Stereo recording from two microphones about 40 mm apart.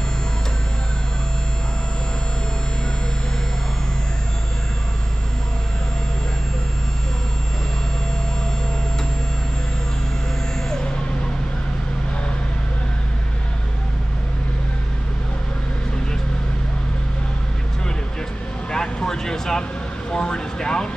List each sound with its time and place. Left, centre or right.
18.7 s vehicle: centre